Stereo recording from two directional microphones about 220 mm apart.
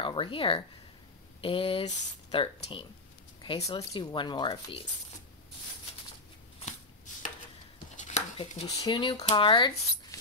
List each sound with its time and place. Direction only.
0.0 s speech: 25° left (ahead or behind)
7.9 s dishes: 30° left (ahead or behind)
8.6 s speech: 20° left (ahead or behind)